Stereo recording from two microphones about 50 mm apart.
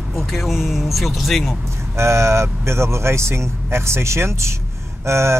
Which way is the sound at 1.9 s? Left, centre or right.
Right.